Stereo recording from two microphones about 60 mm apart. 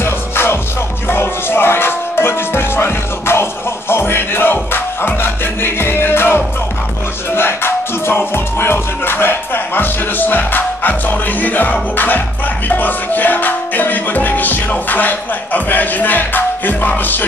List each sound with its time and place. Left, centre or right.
0.0 s music: left